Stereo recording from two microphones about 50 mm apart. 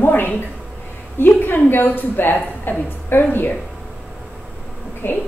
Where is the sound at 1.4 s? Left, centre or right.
Left.